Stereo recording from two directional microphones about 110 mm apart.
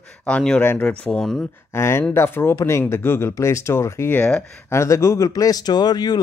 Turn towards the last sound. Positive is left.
turn(degrees=40)  # may be behind; listen again after turning